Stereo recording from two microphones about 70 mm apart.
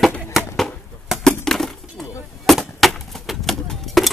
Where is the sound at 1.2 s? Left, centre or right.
Centre.